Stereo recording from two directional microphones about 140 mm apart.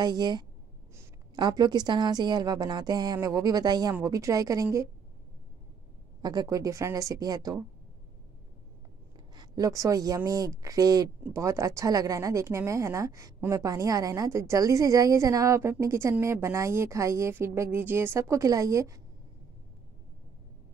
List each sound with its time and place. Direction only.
0.0 s a woman's voice: 30° right (ahead or behind)
6.2 s a woman's voice: 30° right (ahead or behind)
9.3 s a woman's voice: 30° right (ahead or behind)